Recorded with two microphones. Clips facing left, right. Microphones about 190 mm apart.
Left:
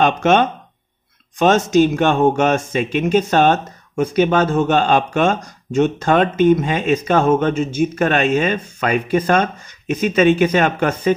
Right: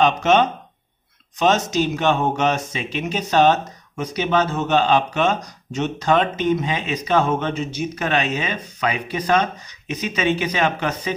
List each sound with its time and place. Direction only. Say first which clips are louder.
0.0 s speech: left 2 dB; 50° left (ahead or behind)